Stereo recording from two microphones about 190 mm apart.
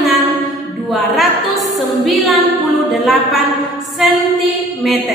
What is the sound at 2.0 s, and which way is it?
Music, centre (ahead or behind).